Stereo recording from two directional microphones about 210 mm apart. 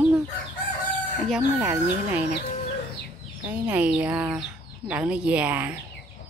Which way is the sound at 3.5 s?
5° right (ahead or behind).